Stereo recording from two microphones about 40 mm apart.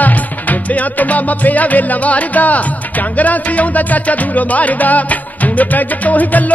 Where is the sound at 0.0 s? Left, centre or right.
Left.